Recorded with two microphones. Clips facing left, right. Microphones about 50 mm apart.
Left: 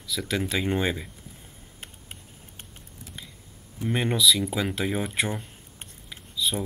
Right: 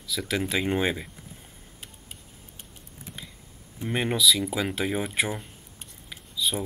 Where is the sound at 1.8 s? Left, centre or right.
Left.